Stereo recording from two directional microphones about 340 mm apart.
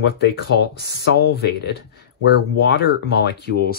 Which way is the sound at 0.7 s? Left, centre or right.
Left.